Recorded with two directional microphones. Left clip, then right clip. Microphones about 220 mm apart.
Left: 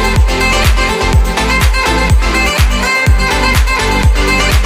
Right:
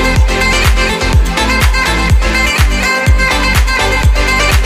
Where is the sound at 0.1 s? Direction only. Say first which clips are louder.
Even; centre (ahead or behind).